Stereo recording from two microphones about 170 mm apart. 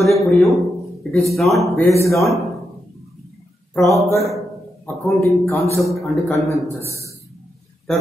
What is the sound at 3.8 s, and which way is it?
Speech, 20° right (ahead or behind).